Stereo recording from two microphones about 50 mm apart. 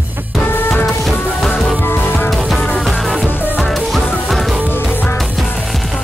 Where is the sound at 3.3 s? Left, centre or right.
Left.